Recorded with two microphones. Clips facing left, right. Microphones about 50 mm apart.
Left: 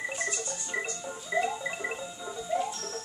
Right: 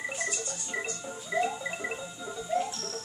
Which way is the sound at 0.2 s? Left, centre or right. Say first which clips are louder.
Left 1 dB; centre.